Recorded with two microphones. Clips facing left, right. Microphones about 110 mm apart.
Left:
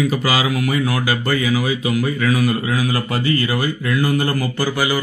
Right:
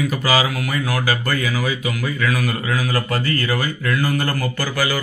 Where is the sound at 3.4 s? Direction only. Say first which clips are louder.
Left 1 dB; 15° left (ahead or behind).